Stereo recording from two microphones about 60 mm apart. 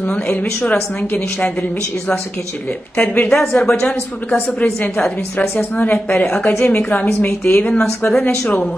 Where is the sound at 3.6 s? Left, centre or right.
Centre.